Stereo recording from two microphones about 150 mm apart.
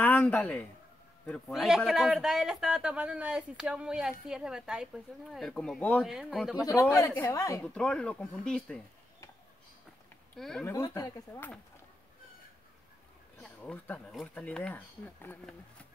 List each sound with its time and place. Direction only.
0.0 s speech: 10° left (ahead or behind)
1.5 s speech: 5° right (ahead or behind)
6.0 s speech: centre (ahead or behind)
6.6 s speech: 20° left (ahead or behind)
7.6 s speech: 5° left (ahead or behind)
10.3 s speech: centre (ahead or behind)
10.6 s speech: 15° left (ahead or behind)
13.4 s speech: 5° left (ahead or behind)